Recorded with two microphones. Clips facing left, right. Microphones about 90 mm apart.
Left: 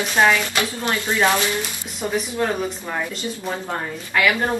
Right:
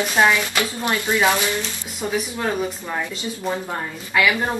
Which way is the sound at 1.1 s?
10° right (ahead or behind).